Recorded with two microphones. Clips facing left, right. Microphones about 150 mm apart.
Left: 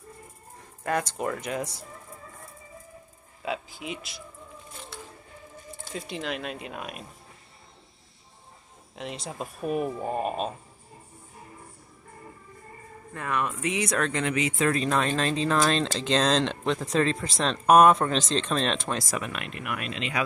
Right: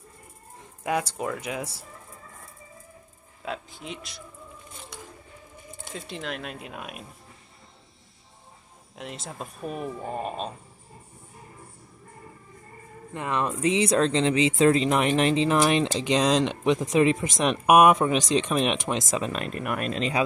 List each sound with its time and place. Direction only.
0.8 s speech: 10° right (ahead or behind)
3.4 s speech: 5° left (ahead or behind)
5.9 s speech: centre (ahead or behind)
8.9 s speech: centre (ahead or behind)
13.1 s speech: 25° right (ahead or behind)